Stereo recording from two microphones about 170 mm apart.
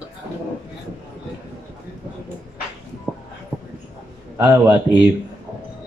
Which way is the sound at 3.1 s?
10° right (ahead or behind).